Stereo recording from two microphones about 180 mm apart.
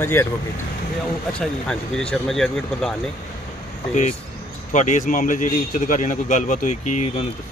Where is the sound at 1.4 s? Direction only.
5° left (ahead or behind).